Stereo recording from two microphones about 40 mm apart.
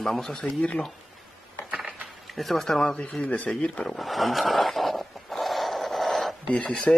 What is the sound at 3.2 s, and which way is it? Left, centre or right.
Speech, left.